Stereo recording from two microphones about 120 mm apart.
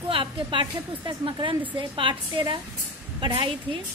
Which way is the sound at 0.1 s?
45° right (ahead or behind).